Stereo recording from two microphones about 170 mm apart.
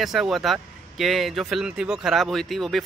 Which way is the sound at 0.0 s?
Centre (ahead or behind).